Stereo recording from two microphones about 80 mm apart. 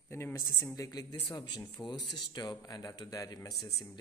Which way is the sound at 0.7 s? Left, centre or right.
Left.